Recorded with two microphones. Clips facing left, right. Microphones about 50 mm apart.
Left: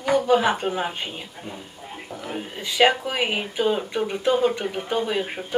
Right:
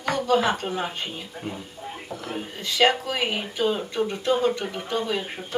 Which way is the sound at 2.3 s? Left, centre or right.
Centre.